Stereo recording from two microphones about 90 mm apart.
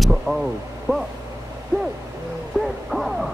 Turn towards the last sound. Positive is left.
turn(degrees=0)  # may be behind; listen again after turning